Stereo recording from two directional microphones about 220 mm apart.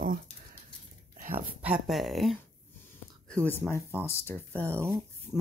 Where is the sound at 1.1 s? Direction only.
35° right (ahead or behind).